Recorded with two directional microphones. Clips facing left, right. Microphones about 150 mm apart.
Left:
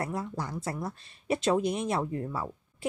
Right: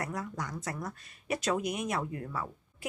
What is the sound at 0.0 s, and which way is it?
Speech, 30° left (ahead or behind).